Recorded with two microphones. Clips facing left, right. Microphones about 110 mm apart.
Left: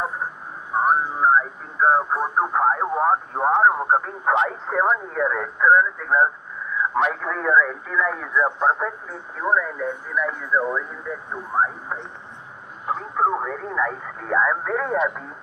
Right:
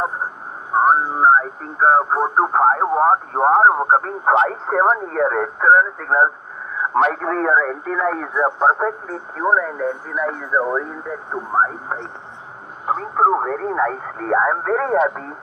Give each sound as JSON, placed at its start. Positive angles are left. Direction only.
{"t": 0.7, "sound": "speech", "side_deg": -40}